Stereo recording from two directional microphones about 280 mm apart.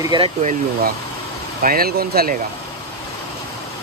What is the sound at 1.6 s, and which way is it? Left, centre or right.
Speech, right.